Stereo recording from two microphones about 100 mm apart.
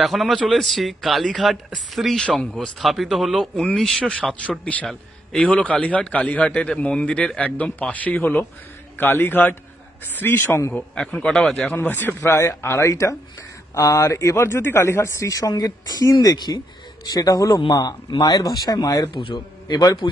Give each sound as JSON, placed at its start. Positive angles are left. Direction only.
{"t": 0.0, "sound": "a man's voice", "side_deg": 0}
{"t": 11.7, "sound": "speech", "side_deg": 20}
{"t": 19.1, "sound": "a man's voice", "side_deg": 50}